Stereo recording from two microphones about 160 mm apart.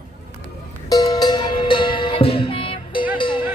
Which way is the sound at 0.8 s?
25° left (ahead or behind).